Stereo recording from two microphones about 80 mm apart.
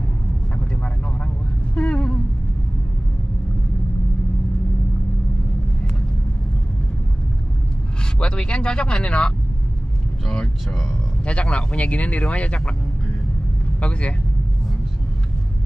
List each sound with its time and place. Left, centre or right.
1.8 s a sound: centre
8.2 s speech: centre
13.7 s speech: centre